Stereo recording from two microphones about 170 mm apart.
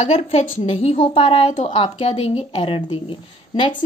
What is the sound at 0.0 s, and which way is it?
A woman's voice, 40° left (ahead or behind).